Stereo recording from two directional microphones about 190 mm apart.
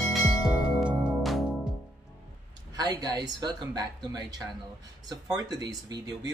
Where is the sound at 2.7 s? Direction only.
20° right (ahead or behind).